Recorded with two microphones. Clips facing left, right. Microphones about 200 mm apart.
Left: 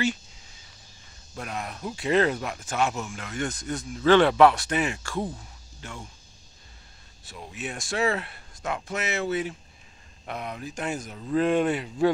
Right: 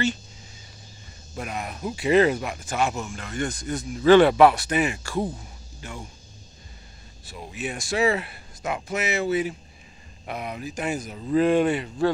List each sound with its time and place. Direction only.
1.3 s speech: 5° right (ahead or behind)
7.2 s speech: centre (ahead or behind)